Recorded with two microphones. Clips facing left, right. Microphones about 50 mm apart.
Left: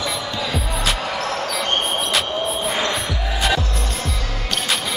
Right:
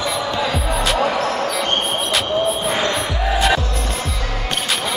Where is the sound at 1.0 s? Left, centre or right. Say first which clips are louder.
Right 5 dB; centre.